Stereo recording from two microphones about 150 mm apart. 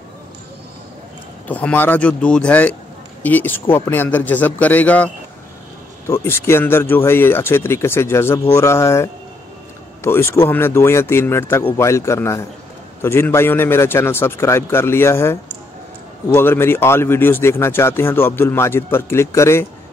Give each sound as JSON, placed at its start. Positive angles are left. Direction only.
{"t": 1.5, "sound": "speech", "side_deg": 10}
{"t": 16.3, "sound": "speech", "side_deg": 15}